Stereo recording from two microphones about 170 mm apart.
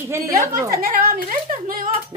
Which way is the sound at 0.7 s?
55° right (ahead or behind).